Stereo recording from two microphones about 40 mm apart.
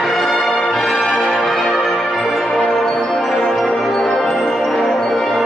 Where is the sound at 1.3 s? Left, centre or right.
Centre.